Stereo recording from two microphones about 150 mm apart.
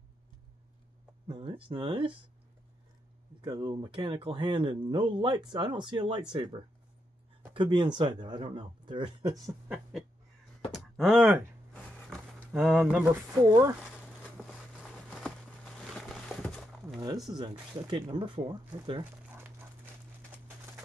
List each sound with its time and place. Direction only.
1.2 s speech: 35° right (ahead or behind)
3.3 s speech: 30° right (ahead or behind)
7.5 s speech: 30° right (ahead or behind)
10.7 s speech: 5° right (ahead or behind)
11.7 s a sound: 5° left (ahead or behind)
12.5 s speech: 5° right (ahead or behind)
13.5 s speech: 20° right (ahead or behind)
14.2 s a sound: 5° right (ahead or behind)
15.0 s a sound: 5° left (ahead or behind)
17.3 s speech: 30° right (ahead or behind)
19.2 s dog: 15° right (ahead or behind)